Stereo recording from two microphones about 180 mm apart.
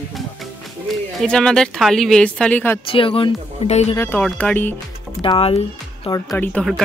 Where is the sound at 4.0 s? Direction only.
10° left (ahead or behind).